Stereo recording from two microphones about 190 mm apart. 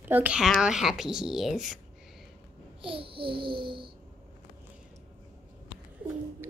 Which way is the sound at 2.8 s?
30° right (ahead or behind).